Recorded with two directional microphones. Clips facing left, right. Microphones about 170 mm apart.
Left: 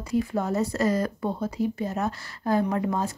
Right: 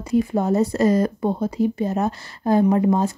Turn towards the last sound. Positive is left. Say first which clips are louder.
# right 8 dB
turn(degrees=-25)  # may be behind; listen again after turning